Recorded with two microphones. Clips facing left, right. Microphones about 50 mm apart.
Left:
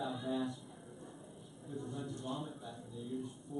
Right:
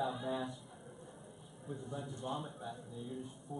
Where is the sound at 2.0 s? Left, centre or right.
Centre.